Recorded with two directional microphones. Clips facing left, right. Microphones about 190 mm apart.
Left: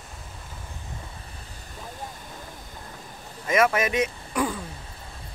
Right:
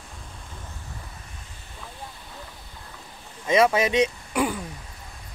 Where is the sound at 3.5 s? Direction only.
15° right (ahead or behind).